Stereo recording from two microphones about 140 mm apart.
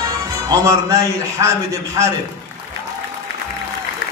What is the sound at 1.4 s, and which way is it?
Speech, 25° right (ahead or behind).